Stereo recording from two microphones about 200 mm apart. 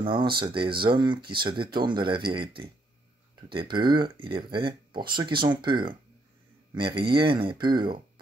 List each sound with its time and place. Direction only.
0.0 s speech: 25° right (ahead or behind)